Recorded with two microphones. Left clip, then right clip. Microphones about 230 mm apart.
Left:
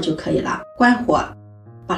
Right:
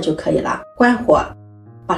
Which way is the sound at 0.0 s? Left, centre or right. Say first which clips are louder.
Right 3 dB; centre.